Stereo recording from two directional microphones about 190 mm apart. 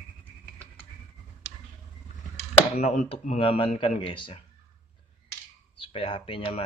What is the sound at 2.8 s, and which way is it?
Speech, 40° left (ahead or behind).